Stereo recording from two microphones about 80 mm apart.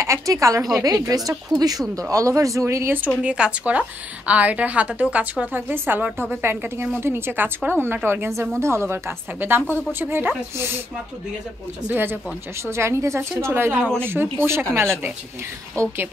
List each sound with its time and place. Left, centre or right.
0.0 s a woman's voice: right
0.8 s speech: right
3.3 s a woman's voice: centre
11.9 s a woman's voice: right
15.8 s a woman's voice: right